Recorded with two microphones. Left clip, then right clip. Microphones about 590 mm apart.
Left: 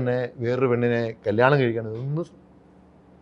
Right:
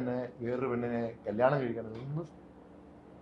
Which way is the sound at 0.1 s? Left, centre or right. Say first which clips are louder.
Left 10 dB; left.